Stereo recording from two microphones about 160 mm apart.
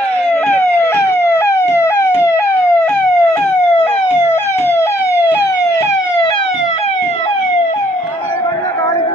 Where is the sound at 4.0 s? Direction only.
45° left (ahead or behind).